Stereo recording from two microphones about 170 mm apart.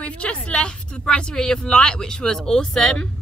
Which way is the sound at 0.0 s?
5° left (ahead or behind).